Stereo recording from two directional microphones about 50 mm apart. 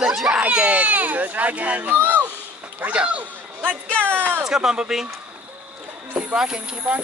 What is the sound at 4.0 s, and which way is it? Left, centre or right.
Speech, right.